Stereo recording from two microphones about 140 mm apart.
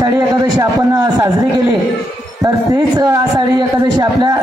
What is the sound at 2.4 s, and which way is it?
A man's voice, 25° right (ahead or behind).